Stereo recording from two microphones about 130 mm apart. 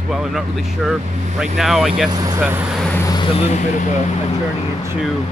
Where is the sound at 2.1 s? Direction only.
30° right (ahead or behind).